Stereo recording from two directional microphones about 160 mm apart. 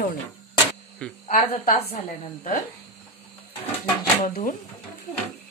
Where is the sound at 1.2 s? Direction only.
40° left (ahead or behind).